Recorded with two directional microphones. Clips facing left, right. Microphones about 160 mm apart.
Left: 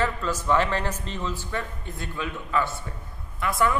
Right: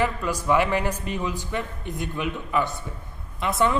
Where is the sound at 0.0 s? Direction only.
15° right (ahead or behind).